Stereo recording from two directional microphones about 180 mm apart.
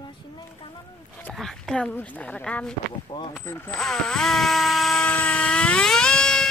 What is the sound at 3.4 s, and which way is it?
Speech, 15° left (ahead or behind).